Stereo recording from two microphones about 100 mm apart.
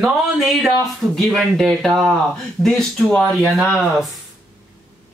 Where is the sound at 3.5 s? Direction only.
Centre (ahead or behind).